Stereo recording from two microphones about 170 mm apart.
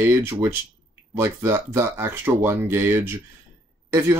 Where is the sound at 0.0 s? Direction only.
15° right (ahead or behind).